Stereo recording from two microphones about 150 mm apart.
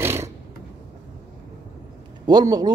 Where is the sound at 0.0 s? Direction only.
15° right (ahead or behind).